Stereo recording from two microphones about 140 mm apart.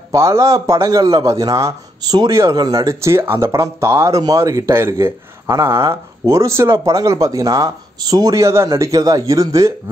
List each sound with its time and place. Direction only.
0.1 s a man's voice: 20° right (ahead or behind)